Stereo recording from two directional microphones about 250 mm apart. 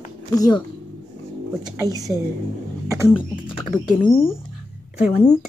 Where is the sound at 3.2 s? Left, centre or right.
Centre.